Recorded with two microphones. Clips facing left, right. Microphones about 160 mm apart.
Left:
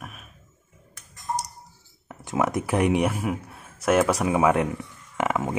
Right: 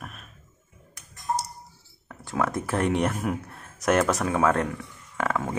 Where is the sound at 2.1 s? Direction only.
20° left (ahead or behind).